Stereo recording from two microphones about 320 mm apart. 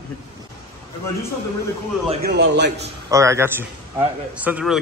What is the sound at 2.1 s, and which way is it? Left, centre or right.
Speech, right.